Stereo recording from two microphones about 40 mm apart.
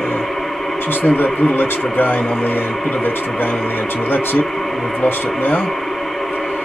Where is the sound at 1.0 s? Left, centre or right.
Left.